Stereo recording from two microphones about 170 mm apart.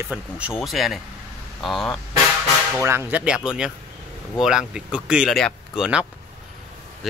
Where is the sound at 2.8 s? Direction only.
15° right (ahead or behind).